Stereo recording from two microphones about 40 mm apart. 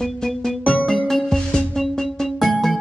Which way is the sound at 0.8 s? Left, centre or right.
Centre.